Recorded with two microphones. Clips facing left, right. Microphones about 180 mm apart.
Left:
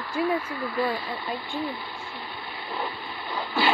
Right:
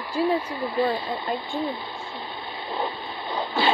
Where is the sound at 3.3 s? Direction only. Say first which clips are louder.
Right 2 dB; 20° right (ahead or behind).